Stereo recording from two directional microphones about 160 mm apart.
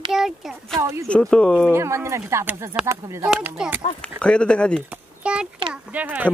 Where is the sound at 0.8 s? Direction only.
20° right (ahead or behind).